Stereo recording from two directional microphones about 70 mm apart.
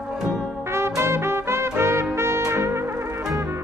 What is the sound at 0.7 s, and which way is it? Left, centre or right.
Music, right.